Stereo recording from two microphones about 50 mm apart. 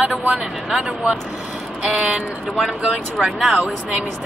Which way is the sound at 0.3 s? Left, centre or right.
Centre.